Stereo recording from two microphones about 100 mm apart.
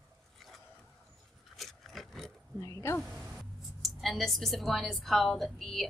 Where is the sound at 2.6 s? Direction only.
30° left (ahead or behind).